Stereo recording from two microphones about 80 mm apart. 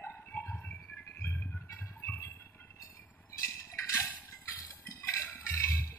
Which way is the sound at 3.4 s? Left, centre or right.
Left.